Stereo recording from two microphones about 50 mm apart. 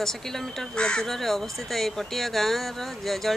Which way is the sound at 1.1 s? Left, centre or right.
Centre.